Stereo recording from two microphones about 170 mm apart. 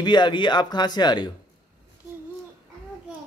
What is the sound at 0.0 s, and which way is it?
Speech, 25° left (ahead or behind).